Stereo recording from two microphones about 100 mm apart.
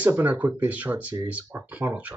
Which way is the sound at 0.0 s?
15° right (ahead or behind).